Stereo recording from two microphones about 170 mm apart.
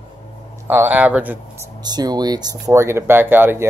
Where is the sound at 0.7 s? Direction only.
10° right (ahead or behind).